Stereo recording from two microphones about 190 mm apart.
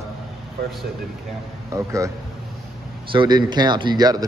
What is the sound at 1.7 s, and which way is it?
Speech, 15° right (ahead or behind).